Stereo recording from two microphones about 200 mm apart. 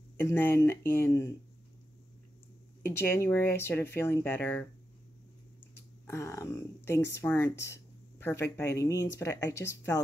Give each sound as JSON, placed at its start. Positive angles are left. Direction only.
{"t": 0.2, "sound": "speech", "side_deg": 10}
{"t": 3.0, "sound": "speech", "side_deg": 10}
{"t": 6.0, "sound": "speech", "side_deg": 15}